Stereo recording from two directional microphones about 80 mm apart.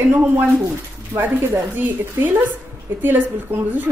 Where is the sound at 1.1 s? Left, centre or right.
Right.